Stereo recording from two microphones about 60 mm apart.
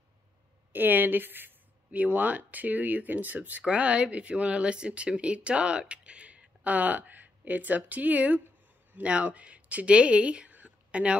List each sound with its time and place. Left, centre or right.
0.7 s speech: right